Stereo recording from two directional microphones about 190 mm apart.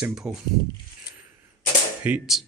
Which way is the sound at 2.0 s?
5° right (ahead or behind).